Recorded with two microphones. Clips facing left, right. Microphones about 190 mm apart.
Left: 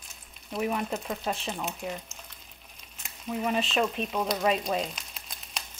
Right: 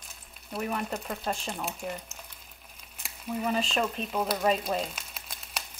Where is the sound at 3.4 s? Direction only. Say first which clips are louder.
Left 2 dB; centre (ahead or behind).